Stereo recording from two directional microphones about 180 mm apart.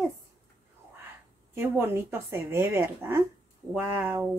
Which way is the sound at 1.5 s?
15° right (ahead or behind).